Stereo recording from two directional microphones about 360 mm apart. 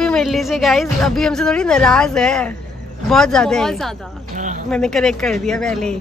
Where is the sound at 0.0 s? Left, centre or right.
Centre.